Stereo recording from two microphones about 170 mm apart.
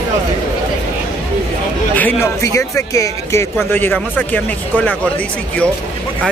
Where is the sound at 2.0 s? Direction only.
15° left (ahead or behind).